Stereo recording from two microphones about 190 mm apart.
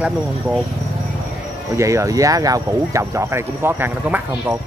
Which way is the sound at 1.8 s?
15° right (ahead or behind).